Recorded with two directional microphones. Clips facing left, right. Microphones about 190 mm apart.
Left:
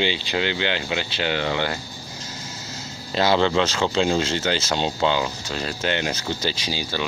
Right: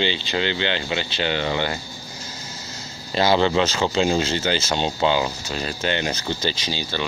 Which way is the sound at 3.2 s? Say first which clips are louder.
Right 1 dB; 5° right (ahead or behind).